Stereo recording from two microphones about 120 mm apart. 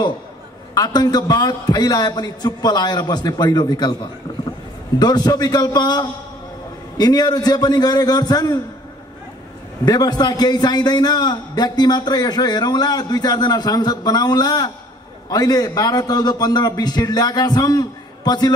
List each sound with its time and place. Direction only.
0.7 s a man's voice: 35° left (ahead or behind)
9.8 s a man's voice: 35° left (ahead or behind)